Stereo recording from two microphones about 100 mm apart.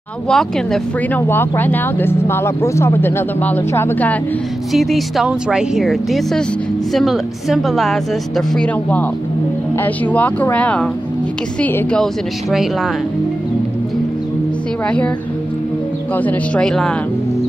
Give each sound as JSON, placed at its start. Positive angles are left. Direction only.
{"t": 0.3, "sound": "a woman's voice", "side_deg": 5}
{"t": 1.1, "sound": "speech", "side_deg": 20}
{"t": 4.7, "sound": "a woman's voice", "side_deg": 0}
{"t": 9.8, "sound": "speech", "side_deg": 15}
{"t": 12.0, "sound": "a woman's voice", "side_deg": 0}
{"t": 16.2, "sound": "speech", "side_deg": 15}
{"t": 16.6, "sound": "a woman's voice", "side_deg": 5}